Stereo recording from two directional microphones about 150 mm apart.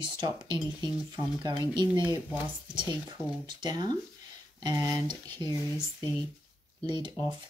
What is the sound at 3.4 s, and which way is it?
Speech, 30° right (ahead or behind).